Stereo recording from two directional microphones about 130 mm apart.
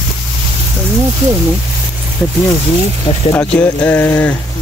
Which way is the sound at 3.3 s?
15° left (ahead or behind).